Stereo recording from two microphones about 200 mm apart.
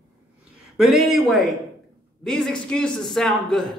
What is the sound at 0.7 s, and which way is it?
A man's voice, centre (ahead or behind).